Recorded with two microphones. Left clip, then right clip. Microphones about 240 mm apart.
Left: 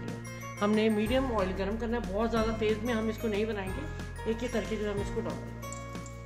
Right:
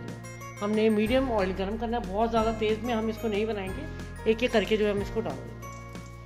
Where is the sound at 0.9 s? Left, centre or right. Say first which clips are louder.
Right 4 dB; right.